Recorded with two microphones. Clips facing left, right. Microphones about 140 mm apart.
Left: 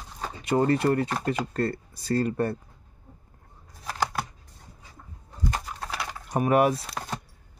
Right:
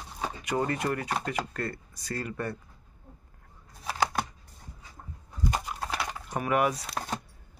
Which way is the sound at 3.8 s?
5° right (ahead or behind).